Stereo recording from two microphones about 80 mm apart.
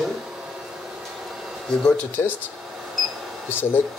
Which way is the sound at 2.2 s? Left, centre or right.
Left.